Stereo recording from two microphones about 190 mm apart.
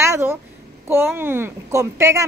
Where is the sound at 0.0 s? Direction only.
15° right (ahead or behind).